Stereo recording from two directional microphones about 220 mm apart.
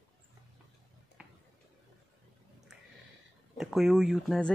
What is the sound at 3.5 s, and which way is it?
Speech, centre (ahead or behind).